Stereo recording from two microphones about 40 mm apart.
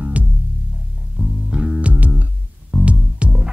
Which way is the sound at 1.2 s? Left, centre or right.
Right.